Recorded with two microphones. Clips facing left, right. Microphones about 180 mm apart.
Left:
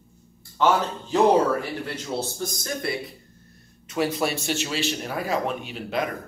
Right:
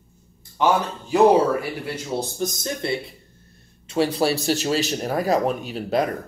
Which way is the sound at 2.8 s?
25° right (ahead or behind).